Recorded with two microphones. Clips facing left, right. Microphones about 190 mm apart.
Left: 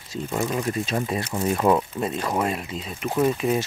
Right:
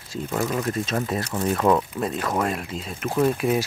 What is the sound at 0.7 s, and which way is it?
Speech, centre (ahead or behind).